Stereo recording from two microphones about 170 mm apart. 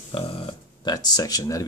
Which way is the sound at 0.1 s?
30° left (ahead or behind).